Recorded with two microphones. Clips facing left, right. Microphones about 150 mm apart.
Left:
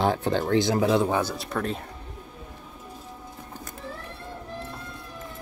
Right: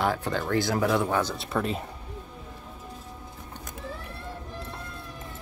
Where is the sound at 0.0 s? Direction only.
30° left (ahead or behind).